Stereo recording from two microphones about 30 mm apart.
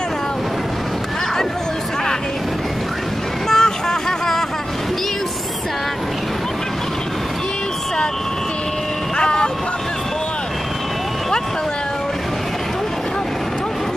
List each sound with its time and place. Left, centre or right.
3.4 s vehicle: centre
9.2 s music: left